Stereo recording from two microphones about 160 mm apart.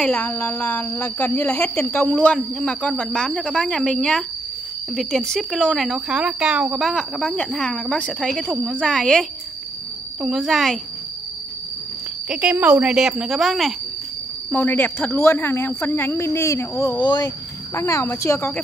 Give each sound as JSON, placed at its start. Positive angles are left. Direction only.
{"t": 0.0, "sound": "speech", "side_deg": 10}
{"t": 10.2, "sound": "speech", "side_deg": 0}
{"t": 12.3, "sound": "speech", "side_deg": -5}
{"t": 14.5, "sound": "speech", "side_deg": 10}